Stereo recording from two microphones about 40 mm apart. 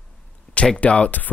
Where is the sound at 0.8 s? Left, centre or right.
Left.